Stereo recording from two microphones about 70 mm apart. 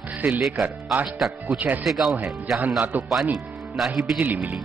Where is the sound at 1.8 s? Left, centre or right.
Centre.